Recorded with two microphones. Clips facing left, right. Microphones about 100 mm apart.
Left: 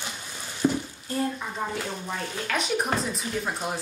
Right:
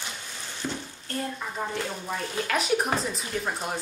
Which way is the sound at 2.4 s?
Centre (ahead or behind).